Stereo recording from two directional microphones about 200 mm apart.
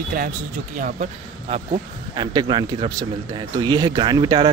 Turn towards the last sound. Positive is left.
turn(degrees=-25)  # may be behind; listen again after turning